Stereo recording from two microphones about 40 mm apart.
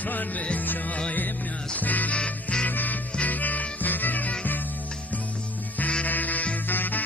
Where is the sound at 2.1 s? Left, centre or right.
Left.